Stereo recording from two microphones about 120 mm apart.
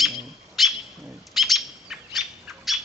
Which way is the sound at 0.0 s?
Centre (ahead or behind).